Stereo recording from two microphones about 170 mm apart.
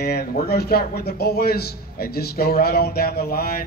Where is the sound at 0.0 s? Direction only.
65° left (ahead or behind).